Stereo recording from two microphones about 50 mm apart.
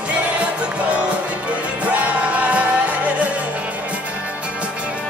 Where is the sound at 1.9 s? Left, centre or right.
Right.